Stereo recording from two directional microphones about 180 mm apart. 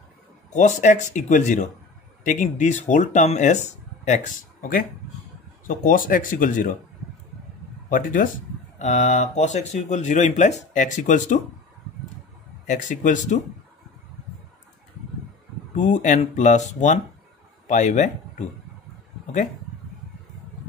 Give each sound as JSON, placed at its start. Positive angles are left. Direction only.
{"t": 0.5, "sound": "speech", "side_deg": 45}
{"t": 7.9, "sound": "speech", "side_deg": 50}
{"t": 12.6, "sound": "speech", "side_deg": 45}
{"t": 15.7, "sound": "speech", "side_deg": 40}